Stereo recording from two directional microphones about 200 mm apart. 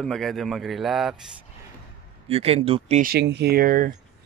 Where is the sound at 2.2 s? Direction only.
30° right (ahead or behind).